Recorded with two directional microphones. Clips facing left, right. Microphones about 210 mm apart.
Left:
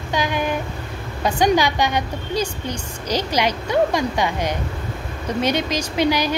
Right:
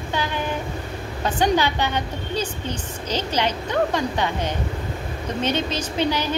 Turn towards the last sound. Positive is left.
turn(degrees=10)  # may be behind; listen again after turning